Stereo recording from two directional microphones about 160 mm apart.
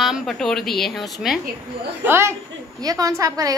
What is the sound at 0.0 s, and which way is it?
Speech, centre (ahead or behind).